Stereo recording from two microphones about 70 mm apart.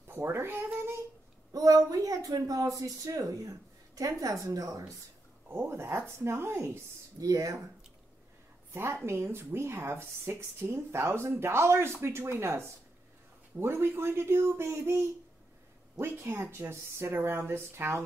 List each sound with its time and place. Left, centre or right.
0.0 s speech: right
1.5 s speech: right
5.5 s speech: right
7.2 s speech: right
9.0 s speech: right